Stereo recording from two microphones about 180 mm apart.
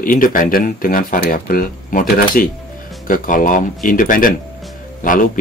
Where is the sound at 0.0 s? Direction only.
50° left (ahead or behind).